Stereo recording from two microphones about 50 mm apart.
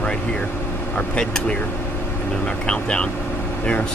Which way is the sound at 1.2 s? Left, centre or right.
Centre.